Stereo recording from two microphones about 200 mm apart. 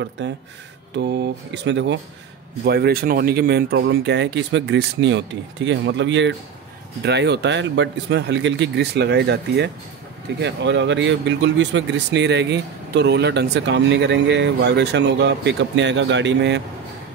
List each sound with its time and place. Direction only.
0.9 s speech: 55° right (ahead or behind)
2.6 s speech: 50° right (ahead or behind)